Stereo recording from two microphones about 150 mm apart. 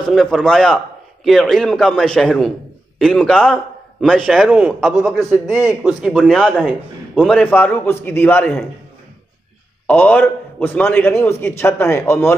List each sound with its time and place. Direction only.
0.1 s a man's voice: centre (ahead or behind)
5.5 s a man's voice: 15° right (ahead or behind)
5.9 s a man's voice: centre (ahead or behind)
9.8 s a man's voice: 10° left (ahead or behind)